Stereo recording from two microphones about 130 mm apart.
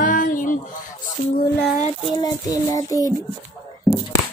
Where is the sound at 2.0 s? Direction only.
35° left (ahead or behind).